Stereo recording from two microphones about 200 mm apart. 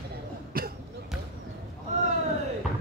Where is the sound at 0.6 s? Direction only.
45° right (ahead or behind).